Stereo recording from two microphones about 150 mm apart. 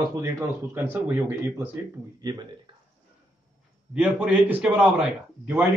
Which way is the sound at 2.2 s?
25° right (ahead or behind).